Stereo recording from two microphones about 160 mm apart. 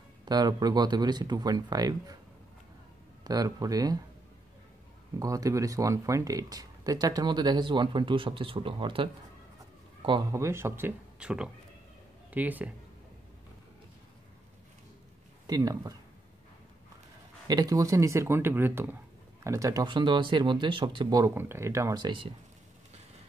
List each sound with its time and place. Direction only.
0.2 s speech: 25° right (ahead or behind)
3.3 s speech: 20° right (ahead or behind)
5.2 s speech: 20° right (ahead or behind)
10.3 s a man's voice: 15° right (ahead or behind)
15.4 s speech: 25° right (ahead or behind)
17.5 s speech: 25° right (ahead or behind)
21.4 s speech: 15° right (ahead or behind)